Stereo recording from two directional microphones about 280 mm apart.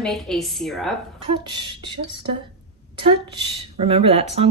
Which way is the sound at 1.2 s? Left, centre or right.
Centre.